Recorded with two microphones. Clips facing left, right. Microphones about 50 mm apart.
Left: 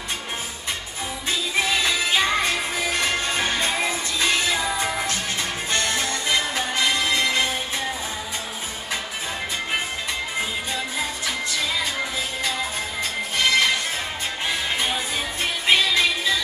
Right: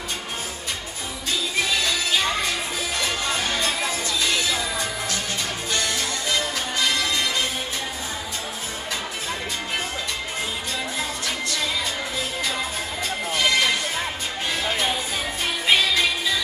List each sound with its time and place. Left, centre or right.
1.8 s music: left
5.7 s music: left
13.4 s music: centre
15.6 s music: centre